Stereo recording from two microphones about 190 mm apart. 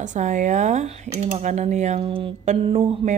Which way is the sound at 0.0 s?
40° right (ahead or behind).